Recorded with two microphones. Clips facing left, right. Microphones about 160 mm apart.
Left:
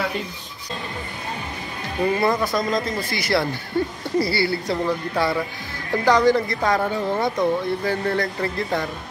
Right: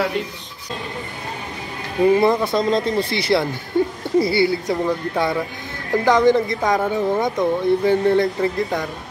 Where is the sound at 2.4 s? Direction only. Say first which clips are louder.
Right 4 dB; 25° right (ahead or behind).